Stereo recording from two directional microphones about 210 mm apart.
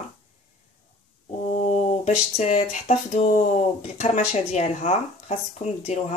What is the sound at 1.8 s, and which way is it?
Speech, 30° left (ahead or behind).